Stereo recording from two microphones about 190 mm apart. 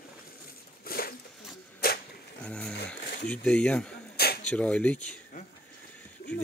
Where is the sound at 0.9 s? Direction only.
50° left (ahead or behind).